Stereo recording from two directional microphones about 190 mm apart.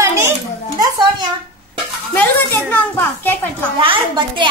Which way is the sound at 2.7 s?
10° left (ahead or behind).